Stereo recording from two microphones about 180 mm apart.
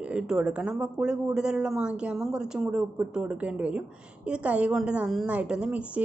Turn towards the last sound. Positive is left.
turn(degrees=-5)  # may be behind; listen again after turning